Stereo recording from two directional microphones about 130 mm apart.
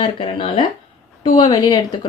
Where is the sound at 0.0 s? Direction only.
40° left (ahead or behind).